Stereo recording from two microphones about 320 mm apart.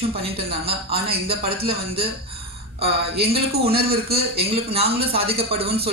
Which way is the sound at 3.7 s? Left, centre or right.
Right.